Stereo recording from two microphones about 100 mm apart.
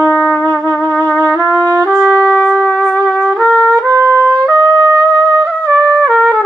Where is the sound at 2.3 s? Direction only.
10° left (ahead or behind).